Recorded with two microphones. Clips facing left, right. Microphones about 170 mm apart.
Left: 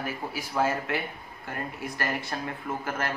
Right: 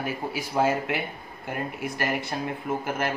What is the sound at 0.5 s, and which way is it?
Speech, 20° right (ahead or behind).